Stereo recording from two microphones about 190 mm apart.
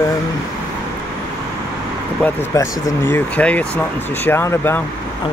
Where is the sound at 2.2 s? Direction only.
15° left (ahead or behind).